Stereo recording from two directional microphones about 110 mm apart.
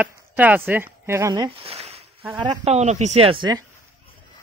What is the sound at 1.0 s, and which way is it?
Speech, 30° right (ahead or behind).